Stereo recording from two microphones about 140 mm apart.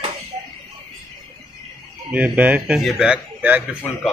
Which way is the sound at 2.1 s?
10° right (ahead or behind).